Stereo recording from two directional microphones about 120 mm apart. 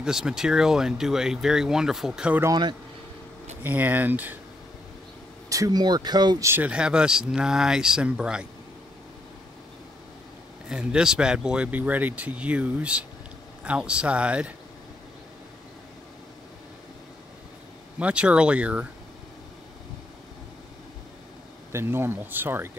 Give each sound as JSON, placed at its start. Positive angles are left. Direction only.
{"t": 0.0, "sound": "speech", "side_deg": -5}
{"t": 3.6, "sound": "speech", "side_deg": -15}
{"t": 5.5, "sound": "speech", "side_deg": -30}
{"t": 6.4, "sound": "speech", "side_deg": -15}
{"t": 10.7, "sound": "speech", "side_deg": -5}
{"t": 17.9, "sound": "speech", "side_deg": -10}
{"t": 21.7, "sound": "speech", "side_deg": -20}